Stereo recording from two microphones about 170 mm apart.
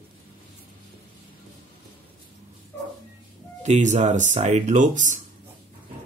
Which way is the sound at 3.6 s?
45° right (ahead or behind).